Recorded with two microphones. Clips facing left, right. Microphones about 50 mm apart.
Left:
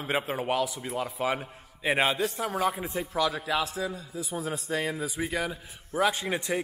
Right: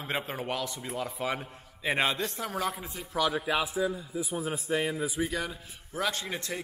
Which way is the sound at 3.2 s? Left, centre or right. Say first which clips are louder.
Even; centre.